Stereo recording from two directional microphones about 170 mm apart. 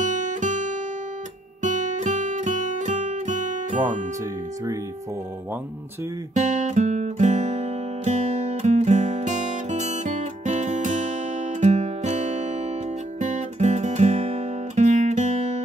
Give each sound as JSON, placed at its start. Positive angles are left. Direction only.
{"t": 0.0, "sound": "guitar", "side_deg": -45}
{"t": 1.6, "sound": "music", "side_deg": -45}
{"t": 6.3, "sound": "guitar", "side_deg": -45}